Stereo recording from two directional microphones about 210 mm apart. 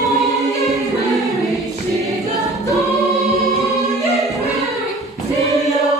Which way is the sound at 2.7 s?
Centre (ahead or behind).